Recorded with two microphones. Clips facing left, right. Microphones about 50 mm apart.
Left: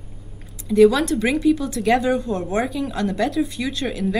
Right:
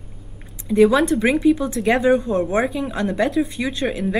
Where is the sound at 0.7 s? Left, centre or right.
Centre.